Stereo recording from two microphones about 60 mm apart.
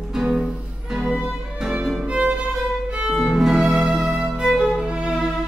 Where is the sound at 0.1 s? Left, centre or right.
Centre.